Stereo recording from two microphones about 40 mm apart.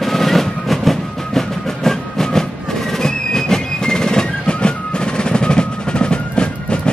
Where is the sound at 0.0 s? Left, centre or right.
Centre.